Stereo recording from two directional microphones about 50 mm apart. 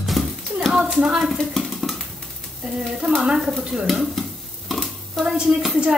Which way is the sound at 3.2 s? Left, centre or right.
Centre.